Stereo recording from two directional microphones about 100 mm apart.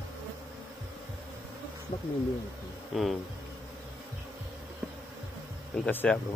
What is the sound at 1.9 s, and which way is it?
Owl, 75° left (ahead or behind).